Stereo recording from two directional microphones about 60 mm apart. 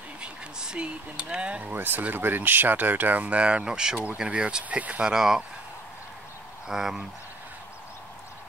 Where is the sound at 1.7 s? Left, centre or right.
Right.